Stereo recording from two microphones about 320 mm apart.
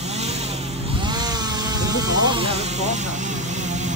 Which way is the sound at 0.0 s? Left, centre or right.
Centre.